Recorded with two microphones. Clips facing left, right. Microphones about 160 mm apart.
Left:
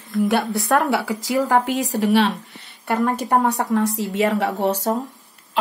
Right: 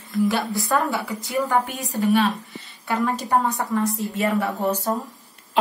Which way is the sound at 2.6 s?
60° left (ahead or behind).